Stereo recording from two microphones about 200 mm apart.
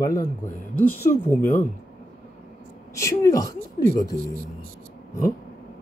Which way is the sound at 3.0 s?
15° left (ahead or behind).